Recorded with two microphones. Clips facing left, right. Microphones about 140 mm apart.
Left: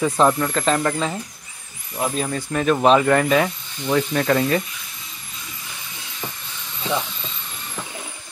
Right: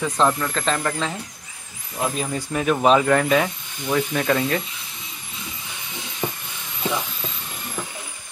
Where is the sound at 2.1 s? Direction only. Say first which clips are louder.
Left 2 dB; 10° right (ahead or behind).